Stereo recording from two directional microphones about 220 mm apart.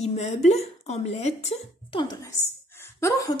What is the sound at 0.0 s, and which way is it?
A woman's voice, 30° left (ahead or behind).